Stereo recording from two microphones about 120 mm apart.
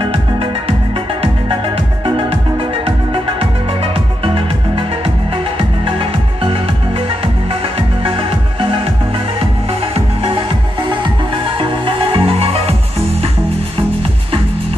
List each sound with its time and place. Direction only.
0.0 s music: 50° right (ahead or behind)
2.0 s music: 50° right (ahead or behind)